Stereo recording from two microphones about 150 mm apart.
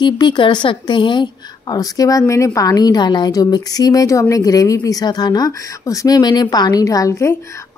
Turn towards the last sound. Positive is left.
turn(degrees=20)  # may be behind; listen again after turning